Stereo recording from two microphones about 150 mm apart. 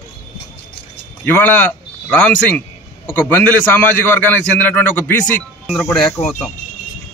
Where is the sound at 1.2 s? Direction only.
15° left (ahead or behind).